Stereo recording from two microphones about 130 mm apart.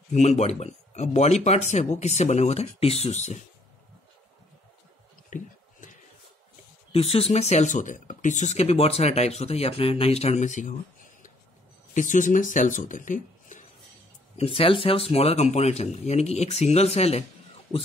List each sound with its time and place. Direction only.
0.1 s speech: 60° left (ahead or behind)
5.3 s speech: 80° left
6.9 s speech: 50° left (ahead or behind); by 13.6 s 80° left
14.3 s speech: 45° left (ahead or behind)